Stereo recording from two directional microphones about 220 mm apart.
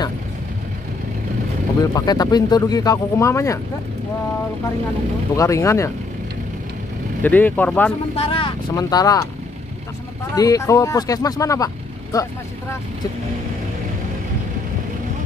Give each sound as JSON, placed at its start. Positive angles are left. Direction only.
{"t": 1.8, "sound": "speech", "side_deg": 15}
{"t": 5.3, "sound": "speech", "side_deg": 15}
{"t": 7.2, "sound": "speech", "side_deg": 10}
{"t": 8.2, "sound": "speech", "side_deg": 25}
{"t": 10.3, "sound": "speech", "side_deg": 15}